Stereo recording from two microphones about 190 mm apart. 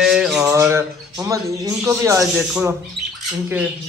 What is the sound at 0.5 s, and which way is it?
Speech, 15° right (ahead or behind).